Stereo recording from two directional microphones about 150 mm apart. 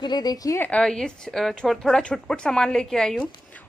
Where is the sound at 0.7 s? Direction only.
5° left (ahead or behind).